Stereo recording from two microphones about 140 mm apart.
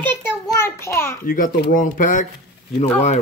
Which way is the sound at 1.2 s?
80° left.